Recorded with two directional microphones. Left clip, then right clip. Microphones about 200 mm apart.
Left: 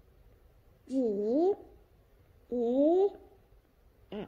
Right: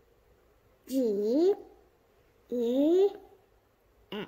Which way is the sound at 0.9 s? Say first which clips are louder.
Right 2 dB; 35° right (ahead or behind).